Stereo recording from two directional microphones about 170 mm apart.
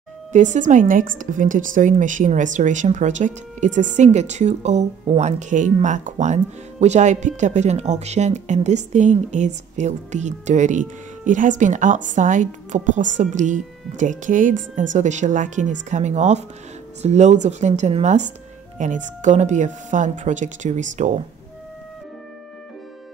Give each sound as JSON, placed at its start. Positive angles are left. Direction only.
{"t": 0.3, "sound": "a woman's voice", "side_deg": -45}